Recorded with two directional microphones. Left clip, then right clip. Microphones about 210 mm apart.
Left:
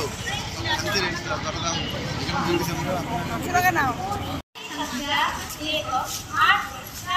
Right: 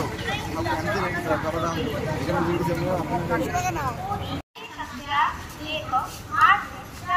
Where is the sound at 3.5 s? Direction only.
45° right (ahead or behind).